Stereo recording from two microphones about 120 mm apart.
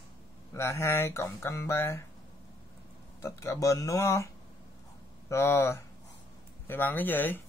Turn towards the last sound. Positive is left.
turn(degrees=15)  # may be behind; listen again after turning